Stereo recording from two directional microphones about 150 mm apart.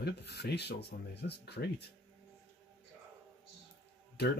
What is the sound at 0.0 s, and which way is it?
Speech, 90° left.